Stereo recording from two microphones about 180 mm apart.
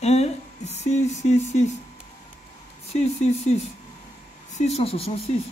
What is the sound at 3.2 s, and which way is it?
Speech, 35° left (ahead or behind).